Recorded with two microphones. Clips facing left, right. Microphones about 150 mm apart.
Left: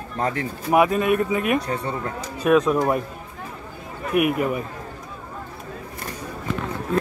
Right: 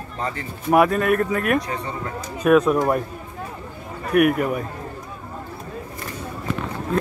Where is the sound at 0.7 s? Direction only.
Centre (ahead or behind).